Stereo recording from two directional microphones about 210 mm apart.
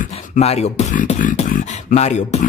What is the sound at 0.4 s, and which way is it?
Beatboxing, 30° left (ahead or behind).